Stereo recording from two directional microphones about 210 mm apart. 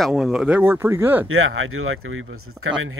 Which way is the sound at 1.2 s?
75° right (ahead or behind).